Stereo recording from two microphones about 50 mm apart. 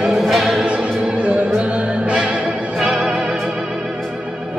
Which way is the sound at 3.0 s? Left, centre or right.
Centre.